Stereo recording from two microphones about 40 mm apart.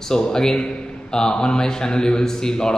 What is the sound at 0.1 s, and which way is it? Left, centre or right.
A man's voice, centre.